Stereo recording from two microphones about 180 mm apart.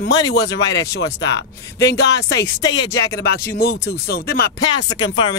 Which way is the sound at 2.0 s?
70° left (ahead or behind).